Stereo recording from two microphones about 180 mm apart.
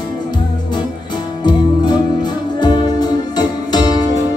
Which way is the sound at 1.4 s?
25° left (ahead or behind).